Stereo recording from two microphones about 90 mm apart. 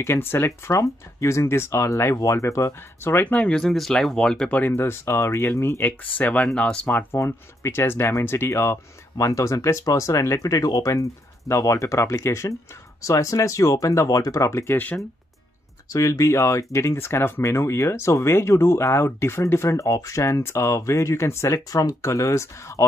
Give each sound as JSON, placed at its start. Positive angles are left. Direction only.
{"t": 0.0, "sound": "speech", "side_deg": 30}
{"t": 3.3, "sound": "speech", "side_deg": 10}
{"t": 4.7, "sound": "speech", "side_deg": 25}
{"t": 7.2, "sound": "speech", "side_deg": 30}
{"t": 15.9, "sound": "speech", "side_deg": 35}